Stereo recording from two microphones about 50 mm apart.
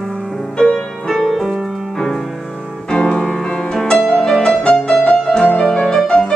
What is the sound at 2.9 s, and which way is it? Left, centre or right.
Music, centre.